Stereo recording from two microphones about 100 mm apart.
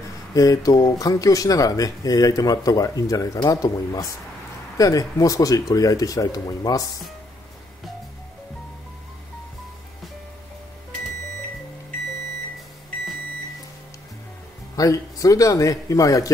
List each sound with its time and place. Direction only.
0.3 s speech: 35° left (ahead or behind)
14.8 s speech: 35° left (ahead or behind)